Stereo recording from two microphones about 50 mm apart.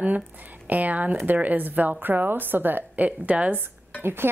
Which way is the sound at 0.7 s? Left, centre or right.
Right.